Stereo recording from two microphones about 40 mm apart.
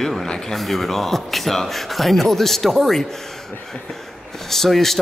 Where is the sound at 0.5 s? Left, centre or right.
Centre.